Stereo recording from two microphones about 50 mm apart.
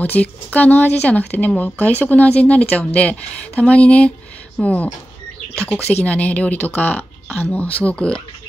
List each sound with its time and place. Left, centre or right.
0.0 s speech: left